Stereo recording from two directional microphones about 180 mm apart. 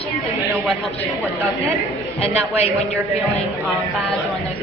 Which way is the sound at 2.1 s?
35° left (ahead or behind).